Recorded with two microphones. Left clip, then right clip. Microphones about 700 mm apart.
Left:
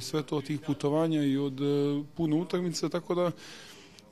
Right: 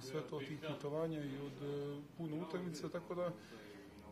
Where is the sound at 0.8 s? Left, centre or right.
Left.